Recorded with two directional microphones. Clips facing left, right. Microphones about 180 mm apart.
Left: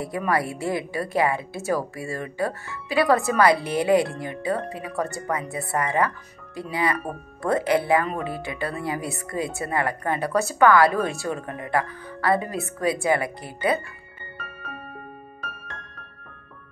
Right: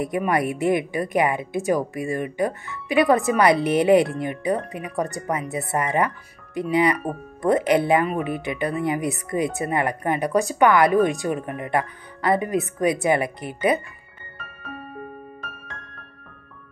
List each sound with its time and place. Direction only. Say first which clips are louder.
0.0 s speech: right 3 dB; 20° right (ahead or behind)